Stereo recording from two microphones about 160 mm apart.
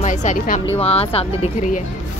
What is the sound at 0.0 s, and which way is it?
Speech, 50° left (ahead or behind).